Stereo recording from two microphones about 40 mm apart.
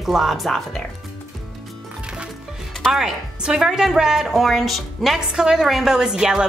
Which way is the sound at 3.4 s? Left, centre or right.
Centre.